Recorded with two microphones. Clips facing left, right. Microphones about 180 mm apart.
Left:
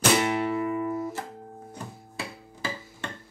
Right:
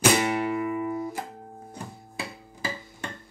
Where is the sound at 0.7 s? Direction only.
10° right (ahead or behind).